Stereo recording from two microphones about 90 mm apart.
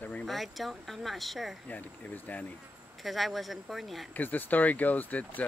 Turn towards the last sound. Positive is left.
turn(degrees=20)  # may be behind; listen again after turning